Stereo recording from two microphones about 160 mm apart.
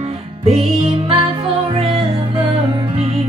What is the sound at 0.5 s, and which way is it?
Music, 35° right (ahead or behind).